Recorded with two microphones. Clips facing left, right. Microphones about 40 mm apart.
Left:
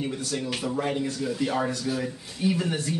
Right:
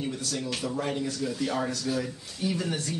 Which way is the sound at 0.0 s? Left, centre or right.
Centre.